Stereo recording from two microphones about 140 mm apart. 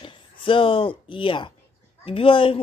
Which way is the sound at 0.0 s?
40° left (ahead or behind).